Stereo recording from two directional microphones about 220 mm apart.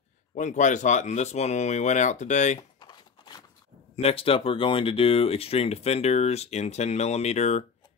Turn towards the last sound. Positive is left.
turn(degrees=30)  # may be behind; listen again after turning